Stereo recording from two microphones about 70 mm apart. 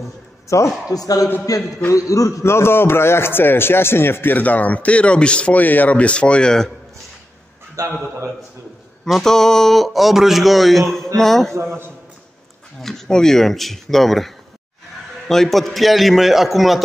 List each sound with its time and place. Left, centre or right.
0.5 s a man's voice: left
0.9 s a man's voice: left
2.4 s a man's voice: left; by 6.7 s centre
7.8 s a man's voice: right
9.0 s speech: centre
11.5 s a man's voice: right
12.8 s speech: centre